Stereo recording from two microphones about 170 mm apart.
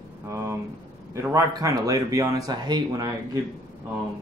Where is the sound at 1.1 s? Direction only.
20° right (ahead or behind).